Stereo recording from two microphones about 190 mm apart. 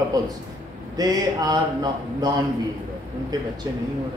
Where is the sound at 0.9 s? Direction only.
20° right (ahead or behind).